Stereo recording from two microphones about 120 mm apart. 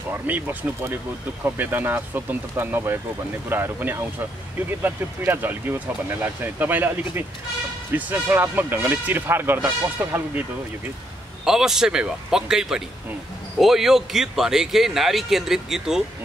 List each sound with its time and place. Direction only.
0.3 s speech: 15° right (ahead or behind)
11.4 s a man's voice: 5° right (ahead or behind)